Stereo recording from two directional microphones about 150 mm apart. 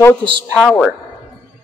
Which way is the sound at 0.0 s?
15° left (ahead or behind).